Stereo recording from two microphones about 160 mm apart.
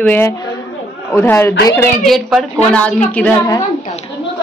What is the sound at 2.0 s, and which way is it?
A woman's voice, centre (ahead or behind).